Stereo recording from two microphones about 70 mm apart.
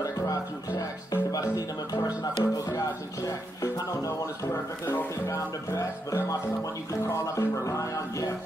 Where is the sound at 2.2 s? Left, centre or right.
Left.